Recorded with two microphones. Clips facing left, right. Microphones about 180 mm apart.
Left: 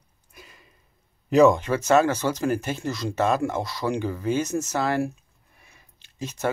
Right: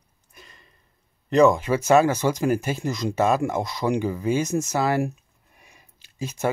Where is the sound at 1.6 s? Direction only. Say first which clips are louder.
Right 2 dB; 10° right (ahead or behind).